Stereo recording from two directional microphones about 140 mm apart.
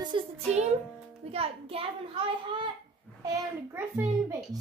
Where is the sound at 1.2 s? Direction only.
45° right (ahead or behind).